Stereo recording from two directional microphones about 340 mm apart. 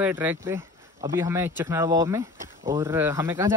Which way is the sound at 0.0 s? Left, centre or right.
Centre.